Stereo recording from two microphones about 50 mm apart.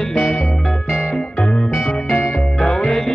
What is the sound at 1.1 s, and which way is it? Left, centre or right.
Music, centre.